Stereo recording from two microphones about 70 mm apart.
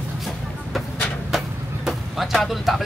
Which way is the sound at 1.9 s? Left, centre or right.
Centre.